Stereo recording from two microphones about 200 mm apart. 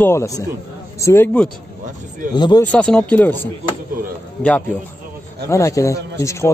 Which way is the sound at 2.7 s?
5° left (ahead or behind).